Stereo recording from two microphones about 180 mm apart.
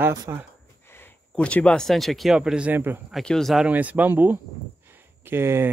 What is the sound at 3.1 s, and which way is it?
Speech, centre (ahead or behind).